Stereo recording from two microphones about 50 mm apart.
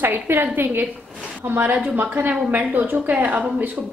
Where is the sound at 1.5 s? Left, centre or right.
Right.